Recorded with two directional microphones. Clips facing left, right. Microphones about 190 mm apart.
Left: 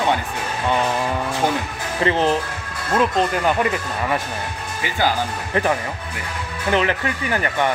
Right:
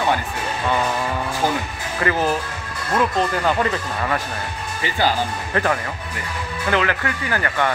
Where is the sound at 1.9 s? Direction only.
25° left (ahead or behind).